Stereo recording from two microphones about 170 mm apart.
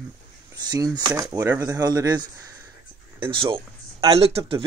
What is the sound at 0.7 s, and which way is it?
Speech, 25° right (ahead or behind).